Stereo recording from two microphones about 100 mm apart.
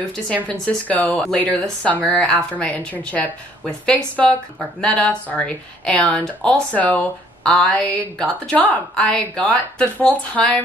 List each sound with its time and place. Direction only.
0.1 s speech: 10° left (ahead or behind)